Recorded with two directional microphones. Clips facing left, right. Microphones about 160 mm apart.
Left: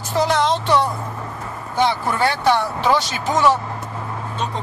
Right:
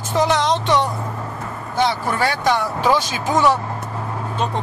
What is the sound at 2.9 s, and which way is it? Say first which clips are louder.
Speech: right 1 dB; 15° right (ahead or behind).